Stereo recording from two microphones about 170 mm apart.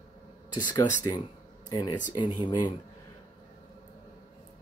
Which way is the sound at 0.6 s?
25° left (ahead or behind).